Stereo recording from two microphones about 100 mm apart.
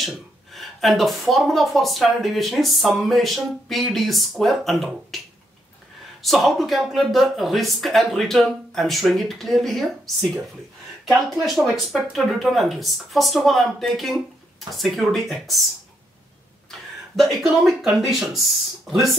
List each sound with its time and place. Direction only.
0.0 s speech: centre (ahead or behind)
6.2 s speech: centre (ahead or behind)
11.1 s speech: centre (ahead or behind)
17.1 s speech: centre (ahead or behind)